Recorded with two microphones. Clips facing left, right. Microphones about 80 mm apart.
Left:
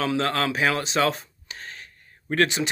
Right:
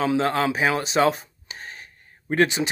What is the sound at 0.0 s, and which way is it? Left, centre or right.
Speech, centre.